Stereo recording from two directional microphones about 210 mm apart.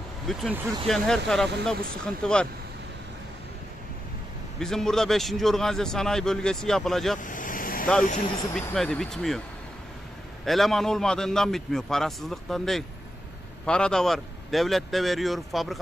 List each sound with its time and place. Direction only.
0.3 s a man's voice: 5° right (ahead or behind)
4.6 s a man's voice: centre (ahead or behind)
7.2 s vehicle: 40° left (ahead or behind)
8.5 s a man's voice: centre (ahead or behind)
10.4 s a man's voice: centre (ahead or behind)